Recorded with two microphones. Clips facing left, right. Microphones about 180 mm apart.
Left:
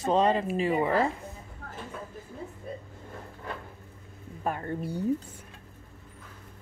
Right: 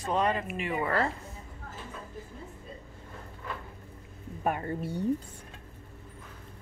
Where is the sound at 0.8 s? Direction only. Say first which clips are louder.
Left 3 dB; 15° left (ahead or behind).